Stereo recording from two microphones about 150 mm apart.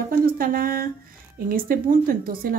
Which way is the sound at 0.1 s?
75° right (ahead or behind).